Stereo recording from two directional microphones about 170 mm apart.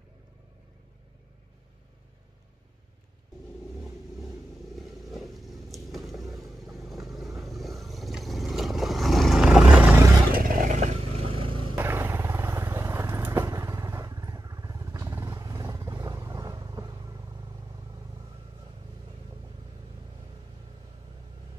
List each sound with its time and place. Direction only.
4.7 s vehicle: centre (ahead or behind)
10.3 s vehicle: 55° right (ahead or behind); by 11.7 s 30° right (ahead or behind)
11.7 s vehicle: 15° right (ahead or behind)